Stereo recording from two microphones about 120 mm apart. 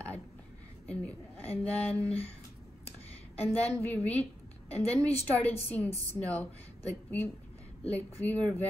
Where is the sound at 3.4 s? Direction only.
15° left (ahead or behind).